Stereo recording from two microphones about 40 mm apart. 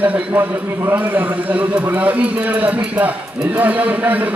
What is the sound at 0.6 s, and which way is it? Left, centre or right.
Speech, right.